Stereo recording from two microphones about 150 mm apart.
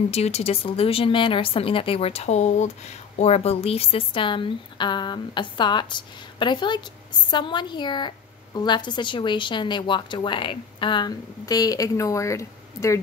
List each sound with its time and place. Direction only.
0.1 s a woman's voice: 45° left (ahead or behind); by 13.0 s 20° left (ahead or behind)